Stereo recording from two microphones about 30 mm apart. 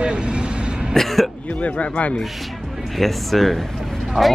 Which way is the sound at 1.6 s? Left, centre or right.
Left.